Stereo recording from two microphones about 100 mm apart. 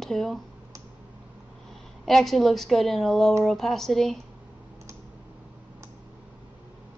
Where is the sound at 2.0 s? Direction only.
Centre (ahead or behind).